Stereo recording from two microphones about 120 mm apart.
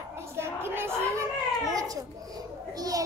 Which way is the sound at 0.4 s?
20° right (ahead or behind).